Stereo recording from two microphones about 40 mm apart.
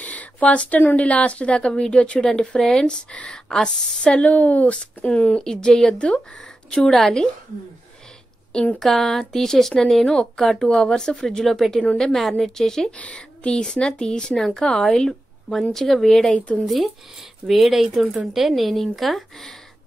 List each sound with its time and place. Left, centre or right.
0.0 s a sound: left
0.9 s speech: left
3.6 s speech: centre
4.3 s speech: left
4.7 s speech: left
5.4 s speech: centre
5.9 s speech: left
6.7 s speech: centre
8.7 s speech: centre
10.0 s speech: left
10.4 s speech: centre
12.9 s speech: left; by 19.5 s centre